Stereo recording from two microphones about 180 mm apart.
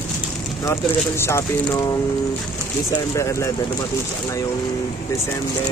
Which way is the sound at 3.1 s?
15° left (ahead or behind).